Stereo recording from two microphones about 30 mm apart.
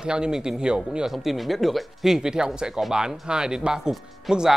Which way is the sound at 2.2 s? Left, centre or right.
Right.